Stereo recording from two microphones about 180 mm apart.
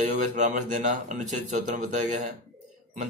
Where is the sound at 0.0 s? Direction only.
40° right (ahead or behind).